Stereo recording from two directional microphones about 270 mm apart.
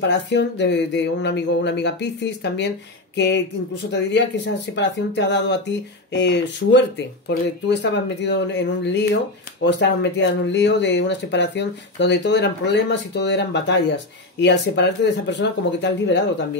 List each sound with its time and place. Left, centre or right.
0.1 s speech: left